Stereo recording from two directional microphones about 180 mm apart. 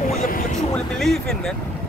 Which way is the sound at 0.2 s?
50° left (ahead or behind).